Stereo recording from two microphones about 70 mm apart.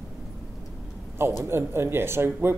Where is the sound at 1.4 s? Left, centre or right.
Right.